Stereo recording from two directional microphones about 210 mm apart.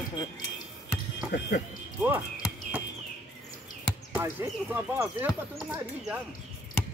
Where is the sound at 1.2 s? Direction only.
50° left (ahead or behind).